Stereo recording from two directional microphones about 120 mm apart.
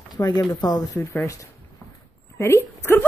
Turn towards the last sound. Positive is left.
turn(degrees=20)  # may be behind; listen again after turning